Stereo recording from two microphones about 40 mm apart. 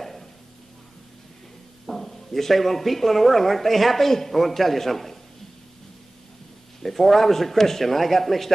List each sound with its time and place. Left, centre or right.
0.0 s a sound: centre
1.9 s speech: centre
6.8 s speech: centre